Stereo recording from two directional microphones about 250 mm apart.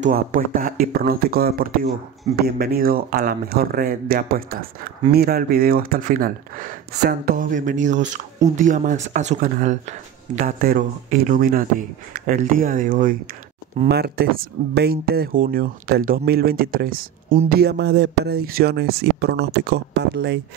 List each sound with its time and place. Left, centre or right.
0.0 s speech: right